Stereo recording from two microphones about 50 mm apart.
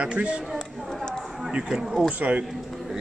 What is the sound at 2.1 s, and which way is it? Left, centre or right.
Speech, right.